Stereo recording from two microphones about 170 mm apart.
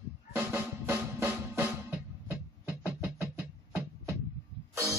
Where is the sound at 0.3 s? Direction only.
15° right (ahead or behind).